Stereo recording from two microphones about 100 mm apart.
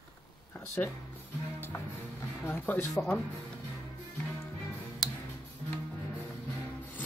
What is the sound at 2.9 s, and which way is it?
Speech, 5° left (ahead or behind).